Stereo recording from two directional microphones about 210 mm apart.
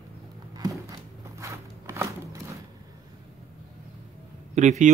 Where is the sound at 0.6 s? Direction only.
15° right (ahead or behind).